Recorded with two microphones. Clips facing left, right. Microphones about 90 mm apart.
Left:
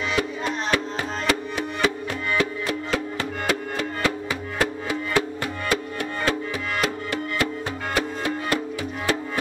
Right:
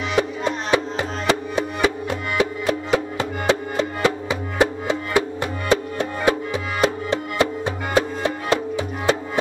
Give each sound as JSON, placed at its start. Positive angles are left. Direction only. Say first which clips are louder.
{"t": 0.1, "sound": "music", "louder": "right 6 dB", "side_deg": -20}